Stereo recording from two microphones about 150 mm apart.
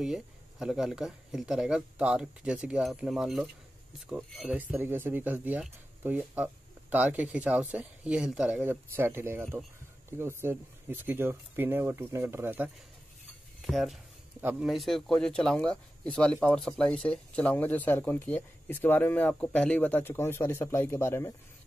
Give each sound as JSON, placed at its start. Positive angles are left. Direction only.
{"t": 0.0, "sound": "speech", "side_deg": -5}
{"t": 13.6, "sound": "speech", "side_deg": 0}
{"t": 14.4, "sound": "speech", "side_deg": -10}
{"t": 14.7, "sound": "speech", "side_deg": 0}